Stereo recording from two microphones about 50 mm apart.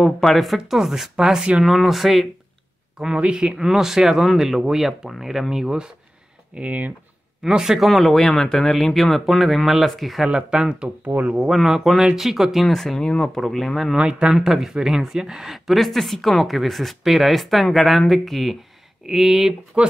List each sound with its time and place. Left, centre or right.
0.0 s speech: centre
3.2 s speech: centre
3.5 s speech: centre
6.5 s speech: right
7.4 s speech: centre
10.2 s speech: centre
11.1 s speech: right
11.5 s speech: centre
12.6 s speech: centre
13.4 s speech: centre
13.9 s speech: centre
19.7 s speech: right